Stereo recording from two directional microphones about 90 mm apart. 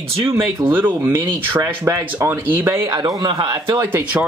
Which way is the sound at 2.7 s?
40° right (ahead or behind).